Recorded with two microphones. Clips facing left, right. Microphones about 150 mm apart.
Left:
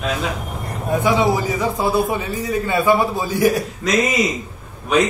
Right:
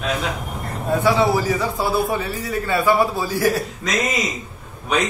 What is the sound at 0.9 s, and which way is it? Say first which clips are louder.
A man's voice: even; 15° left (ahead or behind).